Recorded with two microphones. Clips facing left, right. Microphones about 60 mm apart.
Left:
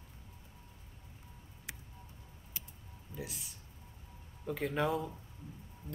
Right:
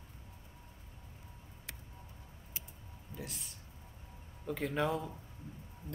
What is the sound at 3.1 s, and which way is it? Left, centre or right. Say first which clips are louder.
Speech: left 2 dB; centre.